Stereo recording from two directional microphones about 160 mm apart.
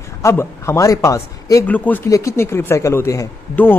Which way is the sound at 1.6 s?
10° left (ahead or behind).